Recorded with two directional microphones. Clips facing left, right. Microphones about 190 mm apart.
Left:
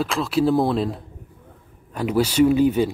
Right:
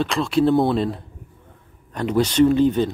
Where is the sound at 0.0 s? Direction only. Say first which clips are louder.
Right 2 dB; 5° left (ahead or behind).